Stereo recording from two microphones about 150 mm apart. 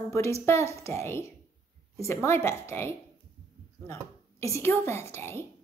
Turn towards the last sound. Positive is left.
turn(degrees=15)  # may be behind; listen again after turning